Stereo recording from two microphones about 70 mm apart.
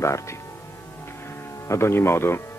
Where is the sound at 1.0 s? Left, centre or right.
Left.